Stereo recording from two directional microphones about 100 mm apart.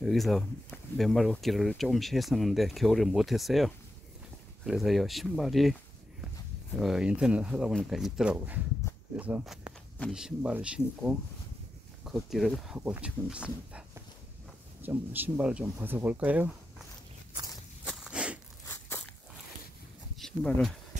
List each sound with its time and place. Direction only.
0.0 s speech: centre (ahead or behind)
6.8 s speech: 5° right (ahead or behind)
9.7 s a sound: 10° right (ahead or behind)
10.1 s speech: 10° right (ahead or behind)
12.7 s speech: 15° right (ahead or behind)
18.0 s a sound: 10° right (ahead or behind)
20.2 s speech: 5° left (ahead or behind)